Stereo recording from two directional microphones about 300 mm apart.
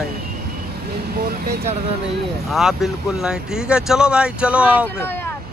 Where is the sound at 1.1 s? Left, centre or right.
Right.